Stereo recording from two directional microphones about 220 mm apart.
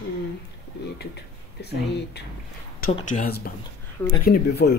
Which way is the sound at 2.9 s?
35° left (ahead or behind).